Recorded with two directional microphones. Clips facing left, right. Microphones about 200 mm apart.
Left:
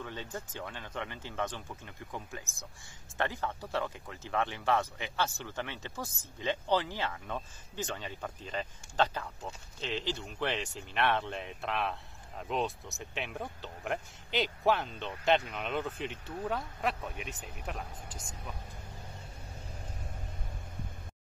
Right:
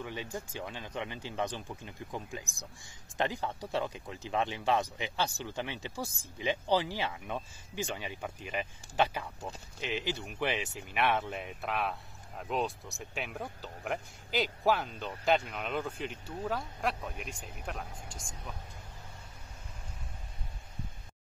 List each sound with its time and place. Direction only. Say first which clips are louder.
0.0 s speech: right 2 dB; 15° right (ahead or behind); by 18.6 s 5° left (ahead or behind)